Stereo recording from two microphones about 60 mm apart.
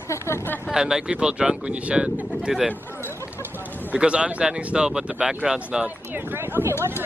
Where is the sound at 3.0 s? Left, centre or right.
Left.